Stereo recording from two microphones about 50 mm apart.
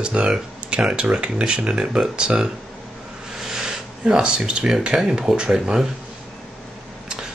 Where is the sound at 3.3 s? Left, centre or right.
Centre.